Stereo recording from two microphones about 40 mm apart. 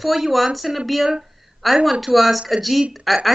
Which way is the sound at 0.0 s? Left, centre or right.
Centre.